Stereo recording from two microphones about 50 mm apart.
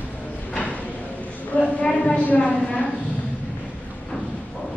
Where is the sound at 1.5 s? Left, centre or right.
Left.